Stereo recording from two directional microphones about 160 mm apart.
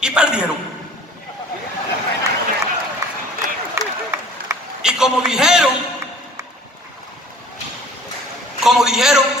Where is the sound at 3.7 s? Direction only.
20° right (ahead or behind).